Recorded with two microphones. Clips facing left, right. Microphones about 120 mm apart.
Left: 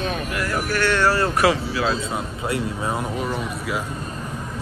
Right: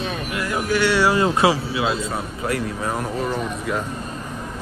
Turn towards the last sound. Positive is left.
turn(degrees=0)  # may be behind; listen again after turning